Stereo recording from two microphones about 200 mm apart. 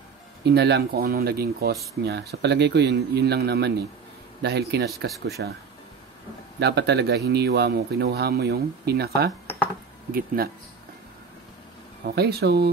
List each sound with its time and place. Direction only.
0.5 s speech: 55° right (ahead or behind)
6.6 s speech: 55° right (ahead or behind)
12.0 s speech: 50° right (ahead or behind)